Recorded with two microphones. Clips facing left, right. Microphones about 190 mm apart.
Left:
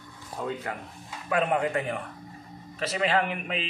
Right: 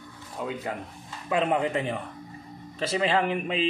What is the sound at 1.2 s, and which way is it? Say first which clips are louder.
Speech: right 1 dB; 25° right (ahead or behind).